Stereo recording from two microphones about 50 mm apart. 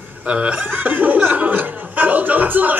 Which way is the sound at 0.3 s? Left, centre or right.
Right.